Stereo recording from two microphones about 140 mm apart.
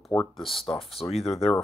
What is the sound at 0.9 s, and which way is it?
Speech, 45° left (ahead or behind).